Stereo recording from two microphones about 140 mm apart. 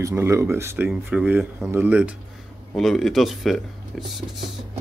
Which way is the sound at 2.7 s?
Centre (ahead or behind).